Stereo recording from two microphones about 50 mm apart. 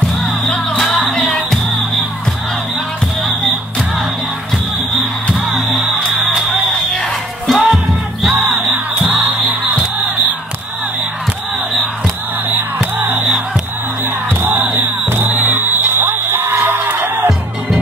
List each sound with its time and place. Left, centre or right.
1.2 s music: centre
5.5 s music: centre
7.4 s music: centre
9.1 s music: right
14.4 s music: right